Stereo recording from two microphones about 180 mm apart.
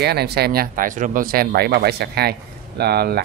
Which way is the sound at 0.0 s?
65° right (ahead or behind).